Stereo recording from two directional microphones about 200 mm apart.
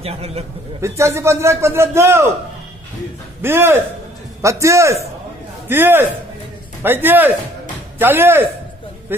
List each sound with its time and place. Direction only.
0.0 s a man's voice: 30° right (ahead or behind)
0.7 s a man's voice: 15° right (ahead or behind)
3.4 s a man's voice: 10° right (ahead or behind)